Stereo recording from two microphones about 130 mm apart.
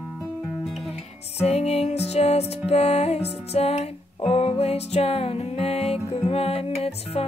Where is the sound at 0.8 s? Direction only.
55° left (ahead or behind).